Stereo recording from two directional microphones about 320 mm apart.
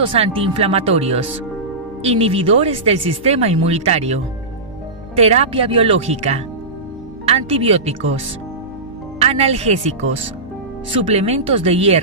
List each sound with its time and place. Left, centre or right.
0.1 s speech: centre
9.2 s speech: centre